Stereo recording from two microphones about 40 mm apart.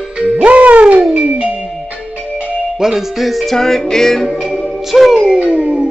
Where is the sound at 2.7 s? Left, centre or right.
Centre.